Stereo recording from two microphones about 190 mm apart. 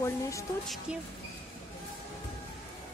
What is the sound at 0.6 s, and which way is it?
Speech, centre (ahead or behind).